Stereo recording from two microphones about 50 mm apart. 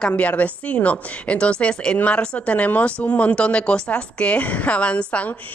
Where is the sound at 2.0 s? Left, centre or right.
Left.